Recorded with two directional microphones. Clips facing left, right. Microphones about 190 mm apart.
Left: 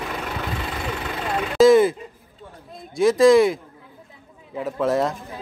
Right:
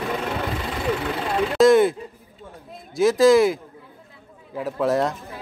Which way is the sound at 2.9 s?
Centre (ahead or behind).